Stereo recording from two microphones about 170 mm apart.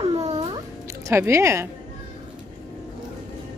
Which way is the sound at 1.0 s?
15° right (ahead or behind).